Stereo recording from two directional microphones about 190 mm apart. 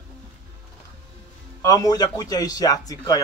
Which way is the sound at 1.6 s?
15° left (ahead or behind).